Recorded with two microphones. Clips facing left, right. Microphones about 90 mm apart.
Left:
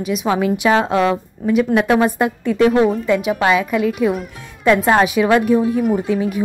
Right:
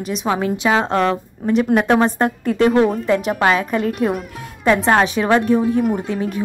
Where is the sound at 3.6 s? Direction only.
40° right (ahead or behind).